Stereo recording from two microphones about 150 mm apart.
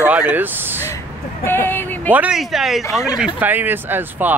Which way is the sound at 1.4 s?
15° left (ahead or behind).